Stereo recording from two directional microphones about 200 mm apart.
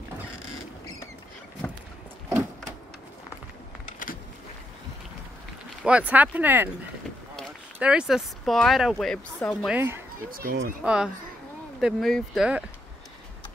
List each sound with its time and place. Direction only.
5.9 s speech: 5° right (ahead or behind)
9.8 s speech: 10° right (ahead or behind)
10.3 s speech: 50° right (ahead or behind)
10.8 s speech: 5° right (ahead or behind)